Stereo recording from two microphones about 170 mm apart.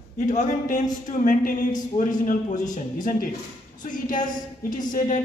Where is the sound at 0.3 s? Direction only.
45° left (ahead or behind).